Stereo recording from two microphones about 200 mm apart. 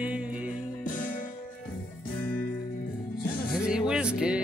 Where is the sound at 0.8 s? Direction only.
40° left (ahead or behind).